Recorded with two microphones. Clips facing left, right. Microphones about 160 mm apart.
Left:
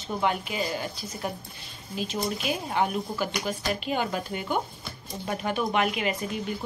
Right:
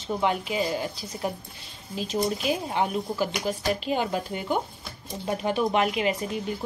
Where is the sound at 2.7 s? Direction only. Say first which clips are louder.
Even; 20° right (ahead or behind).